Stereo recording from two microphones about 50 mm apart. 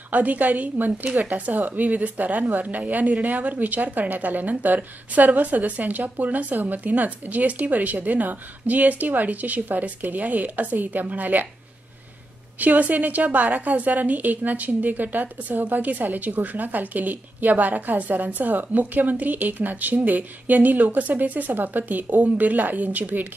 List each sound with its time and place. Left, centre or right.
0.1 s a woman's voice: right
12.5 s a woman's voice: right